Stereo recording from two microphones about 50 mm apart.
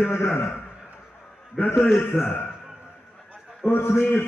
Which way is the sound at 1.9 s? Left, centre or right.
Left.